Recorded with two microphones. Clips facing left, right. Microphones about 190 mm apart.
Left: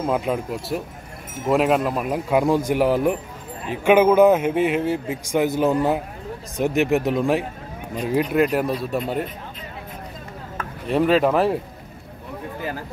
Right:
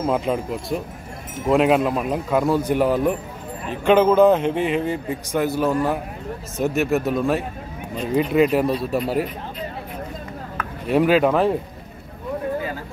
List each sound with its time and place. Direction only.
0.0 s a man's voice: centre (ahead or behind)
5.4 s a man's voice: 20° left (ahead or behind)
8.2 s speech: centre (ahead or behind)
10.9 s speech: centre (ahead or behind)